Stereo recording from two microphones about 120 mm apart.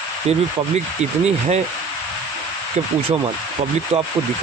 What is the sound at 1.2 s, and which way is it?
Speech, 65° right (ahead or behind).